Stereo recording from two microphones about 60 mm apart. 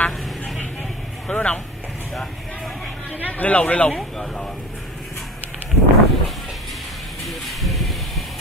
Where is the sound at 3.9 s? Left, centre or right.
Centre.